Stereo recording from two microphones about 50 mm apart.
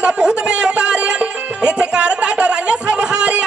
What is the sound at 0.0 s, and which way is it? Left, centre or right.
Music, centre.